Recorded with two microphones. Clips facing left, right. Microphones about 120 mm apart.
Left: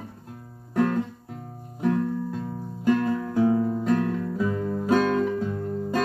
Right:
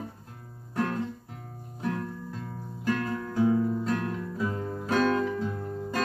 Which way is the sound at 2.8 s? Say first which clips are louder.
Left 7 dB; 15° left (ahead or behind).